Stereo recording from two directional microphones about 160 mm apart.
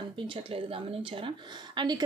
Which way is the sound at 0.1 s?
30° right (ahead or behind).